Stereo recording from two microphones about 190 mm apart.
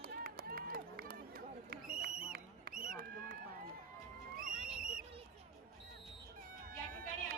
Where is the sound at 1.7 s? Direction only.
50° right (ahead or behind).